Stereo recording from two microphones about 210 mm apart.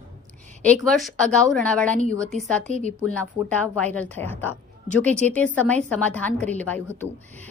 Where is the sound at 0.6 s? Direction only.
5° left (ahead or behind).